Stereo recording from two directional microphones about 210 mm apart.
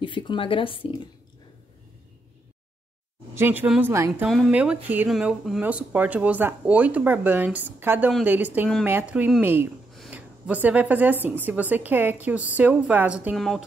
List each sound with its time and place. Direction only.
0.0 s speech: 20° left (ahead or behind)
3.3 s speech: 10° right (ahead or behind)